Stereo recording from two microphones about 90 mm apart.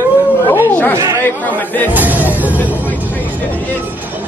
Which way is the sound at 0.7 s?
20° left (ahead or behind).